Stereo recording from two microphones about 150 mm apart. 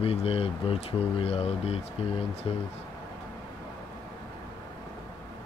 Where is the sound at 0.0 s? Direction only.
40° left (ahead or behind).